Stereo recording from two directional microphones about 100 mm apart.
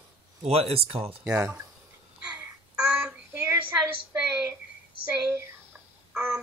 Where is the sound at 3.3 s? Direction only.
20° right (ahead or behind).